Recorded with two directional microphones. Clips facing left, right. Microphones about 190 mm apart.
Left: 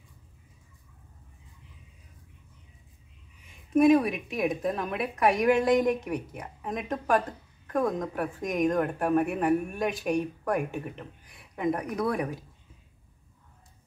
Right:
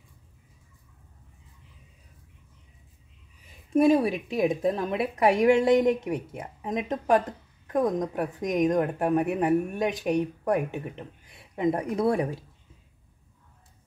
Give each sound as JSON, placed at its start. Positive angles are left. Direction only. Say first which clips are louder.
{"t": 3.4, "sound": "a woman's voice", "louder": "even", "side_deg": -30}